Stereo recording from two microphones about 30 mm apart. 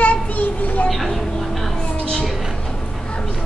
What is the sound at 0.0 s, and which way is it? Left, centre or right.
Child singing, left.